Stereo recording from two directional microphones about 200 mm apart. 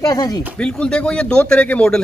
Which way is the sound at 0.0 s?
20° left (ahead or behind).